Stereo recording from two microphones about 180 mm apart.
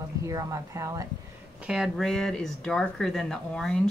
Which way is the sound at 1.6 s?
5° right (ahead or behind).